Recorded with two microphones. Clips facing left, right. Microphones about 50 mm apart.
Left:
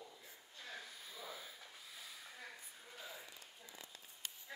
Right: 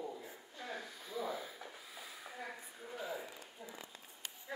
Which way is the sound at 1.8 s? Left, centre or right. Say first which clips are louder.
Right 4 dB; centre.